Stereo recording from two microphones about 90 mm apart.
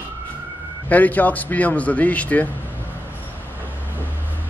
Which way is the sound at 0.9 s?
20° left (ahead or behind).